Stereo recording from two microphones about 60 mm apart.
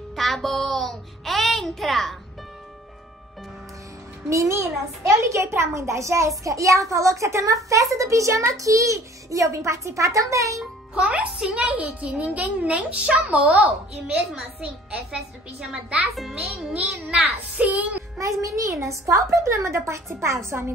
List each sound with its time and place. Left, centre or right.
0.1 s a child's voice: centre
4.3 s a child's voice: right
5.2 s a child's voice: right
11.0 s a child's voice: centre
15.7 s a child's voice: centre
18.2 s a child's voice: right